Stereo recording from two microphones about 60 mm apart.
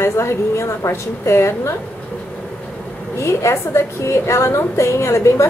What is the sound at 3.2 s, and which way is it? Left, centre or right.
A woman's voice, left.